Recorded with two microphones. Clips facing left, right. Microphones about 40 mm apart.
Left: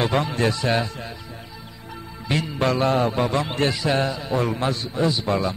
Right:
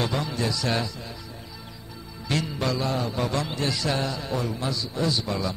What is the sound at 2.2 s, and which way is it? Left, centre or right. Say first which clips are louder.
Music: left 3 dB; left.